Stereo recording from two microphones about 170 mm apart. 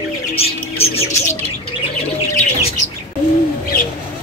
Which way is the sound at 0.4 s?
35° left (ahead or behind).